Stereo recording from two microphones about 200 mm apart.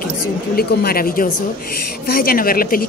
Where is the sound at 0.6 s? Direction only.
50° left (ahead or behind).